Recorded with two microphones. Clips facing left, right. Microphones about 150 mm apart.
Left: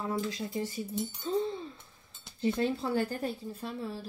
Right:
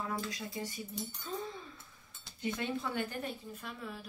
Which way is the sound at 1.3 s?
30° left (ahead or behind).